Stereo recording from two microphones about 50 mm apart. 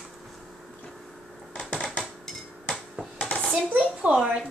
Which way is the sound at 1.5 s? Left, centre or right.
Centre.